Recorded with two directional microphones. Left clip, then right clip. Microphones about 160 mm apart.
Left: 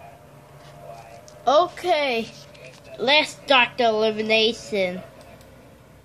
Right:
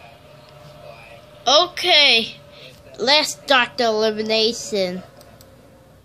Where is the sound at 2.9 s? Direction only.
15° right (ahead or behind).